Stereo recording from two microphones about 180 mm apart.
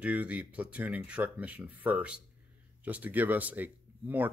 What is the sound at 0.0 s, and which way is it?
Speech, 10° right (ahead or behind).